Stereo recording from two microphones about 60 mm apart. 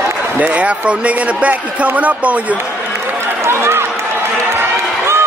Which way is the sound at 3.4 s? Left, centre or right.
Right.